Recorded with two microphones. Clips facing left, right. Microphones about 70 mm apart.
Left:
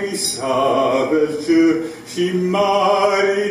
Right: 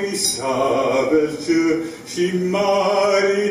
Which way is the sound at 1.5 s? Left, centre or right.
Left.